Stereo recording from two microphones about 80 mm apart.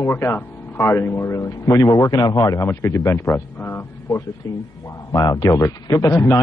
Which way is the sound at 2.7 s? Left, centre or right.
Left.